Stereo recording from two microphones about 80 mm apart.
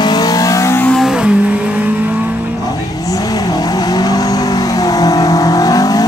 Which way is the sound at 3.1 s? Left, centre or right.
Left.